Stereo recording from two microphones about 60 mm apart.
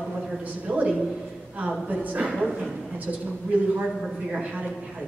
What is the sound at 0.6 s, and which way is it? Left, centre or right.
Speech, right.